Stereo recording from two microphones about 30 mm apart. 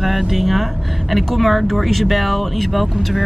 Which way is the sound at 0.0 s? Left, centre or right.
Centre.